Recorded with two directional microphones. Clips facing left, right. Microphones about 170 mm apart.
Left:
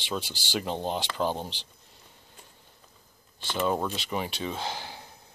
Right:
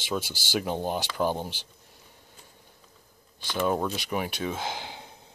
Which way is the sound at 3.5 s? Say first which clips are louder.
Right 1 dB; 10° right (ahead or behind).